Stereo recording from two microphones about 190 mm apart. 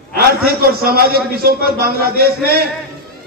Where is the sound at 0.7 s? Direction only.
55° right (ahead or behind).